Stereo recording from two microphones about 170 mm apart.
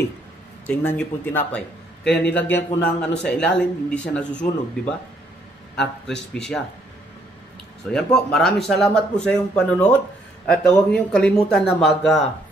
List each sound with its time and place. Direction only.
0.7 s speech: 10° left (ahead or behind)
7.9 s speech: centre (ahead or behind)